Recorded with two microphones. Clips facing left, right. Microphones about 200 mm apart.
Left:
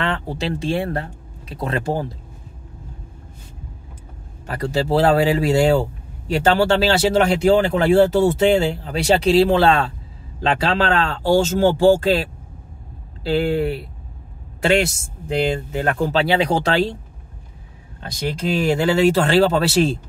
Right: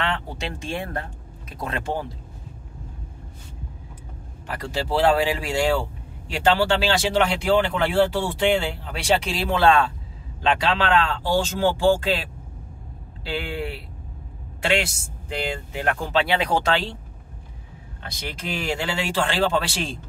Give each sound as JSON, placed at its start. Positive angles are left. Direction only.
{"t": 0.0, "sound": "speech", "side_deg": 40}
{"t": 4.5, "sound": "a woman's voice", "side_deg": 40}
{"t": 18.7, "sound": "speech", "side_deg": 40}